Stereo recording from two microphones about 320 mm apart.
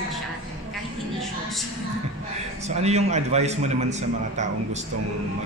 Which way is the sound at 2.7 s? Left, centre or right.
Centre.